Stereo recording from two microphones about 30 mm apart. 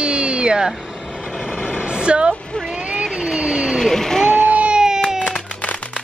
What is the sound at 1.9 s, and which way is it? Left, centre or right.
Vehicle, right.